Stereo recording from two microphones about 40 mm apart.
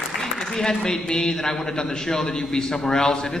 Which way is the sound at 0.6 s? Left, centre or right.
Centre.